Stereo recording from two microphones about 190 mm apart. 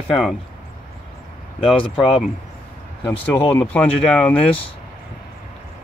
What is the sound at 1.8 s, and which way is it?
Speech, 25° left (ahead or behind).